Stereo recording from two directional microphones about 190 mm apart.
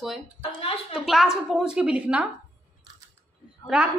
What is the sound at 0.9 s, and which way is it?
Speech, centre (ahead or behind).